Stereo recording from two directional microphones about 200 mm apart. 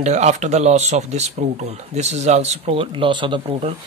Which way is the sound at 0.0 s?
35° right (ahead or behind).